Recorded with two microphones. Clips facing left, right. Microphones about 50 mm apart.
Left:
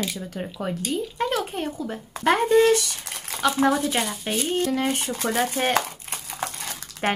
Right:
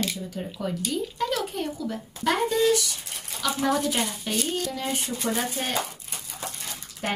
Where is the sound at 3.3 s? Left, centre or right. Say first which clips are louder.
Left 6 dB; left.